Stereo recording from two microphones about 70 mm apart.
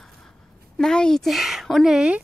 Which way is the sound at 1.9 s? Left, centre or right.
Centre.